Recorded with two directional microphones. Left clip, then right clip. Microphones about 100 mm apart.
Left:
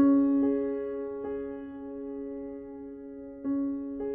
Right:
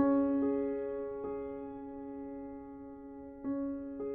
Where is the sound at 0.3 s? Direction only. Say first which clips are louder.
Left 5 dB; 30° left (ahead or behind).